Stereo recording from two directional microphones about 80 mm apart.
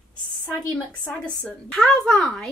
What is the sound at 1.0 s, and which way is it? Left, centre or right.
A woman's voice, left.